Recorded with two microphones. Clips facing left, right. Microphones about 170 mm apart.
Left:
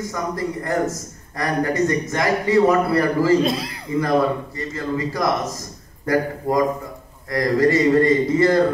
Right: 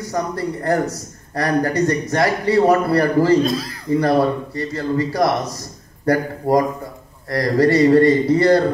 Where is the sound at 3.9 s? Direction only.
30° right (ahead or behind).